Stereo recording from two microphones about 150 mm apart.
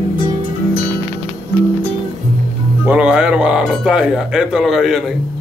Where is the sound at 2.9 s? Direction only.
5° right (ahead or behind).